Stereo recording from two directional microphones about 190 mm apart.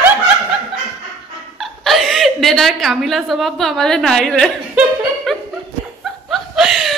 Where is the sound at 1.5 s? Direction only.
Centre (ahead or behind).